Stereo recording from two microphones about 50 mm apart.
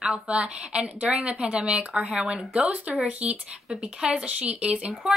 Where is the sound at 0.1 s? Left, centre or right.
Right.